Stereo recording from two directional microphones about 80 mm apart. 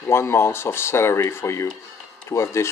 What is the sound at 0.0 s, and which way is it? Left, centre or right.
Speech, left.